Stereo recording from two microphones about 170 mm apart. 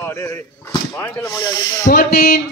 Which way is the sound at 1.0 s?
15° left (ahead or behind).